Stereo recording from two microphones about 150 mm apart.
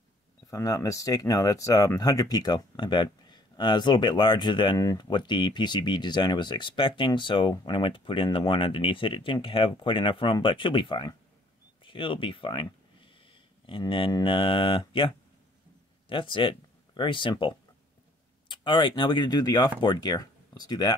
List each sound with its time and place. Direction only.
0.5 s speech: 20° left (ahead or behind)